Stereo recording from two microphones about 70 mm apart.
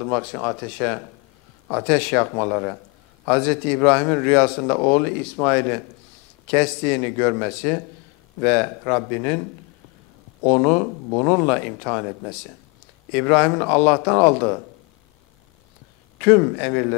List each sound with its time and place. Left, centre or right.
0.0 s speech: centre
10.4 s speech: centre
16.2 s speech: centre